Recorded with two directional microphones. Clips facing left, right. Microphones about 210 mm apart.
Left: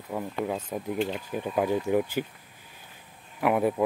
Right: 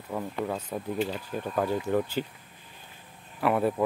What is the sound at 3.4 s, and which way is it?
Speech, 10° left (ahead or behind).